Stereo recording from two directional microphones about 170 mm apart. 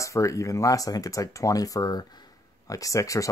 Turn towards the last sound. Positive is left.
turn(degrees=20)  # may be behind; listen again after turning